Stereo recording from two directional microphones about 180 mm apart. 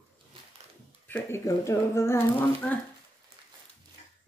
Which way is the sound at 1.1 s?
15° left (ahead or behind).